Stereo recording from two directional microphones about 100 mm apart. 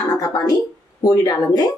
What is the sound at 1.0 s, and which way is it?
Speech, 40° left (ahead or behind).